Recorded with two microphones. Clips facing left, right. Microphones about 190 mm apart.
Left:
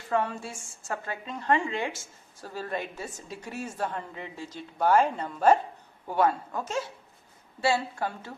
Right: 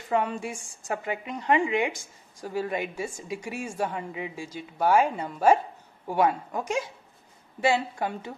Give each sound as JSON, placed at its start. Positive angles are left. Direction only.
{"t": 0.1, "sound": "a woman's voice", "side_deg": -15}